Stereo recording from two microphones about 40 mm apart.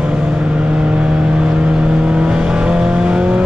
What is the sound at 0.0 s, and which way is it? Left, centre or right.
Vehicle, right.